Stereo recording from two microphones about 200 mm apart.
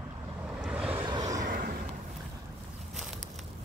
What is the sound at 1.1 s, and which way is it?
Vehicle, 20° right (ahead or behind).